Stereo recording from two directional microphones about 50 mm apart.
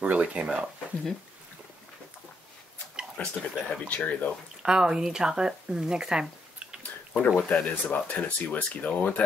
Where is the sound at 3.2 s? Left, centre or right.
Left.